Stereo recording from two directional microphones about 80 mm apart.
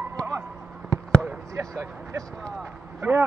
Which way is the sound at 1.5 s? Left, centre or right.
Right.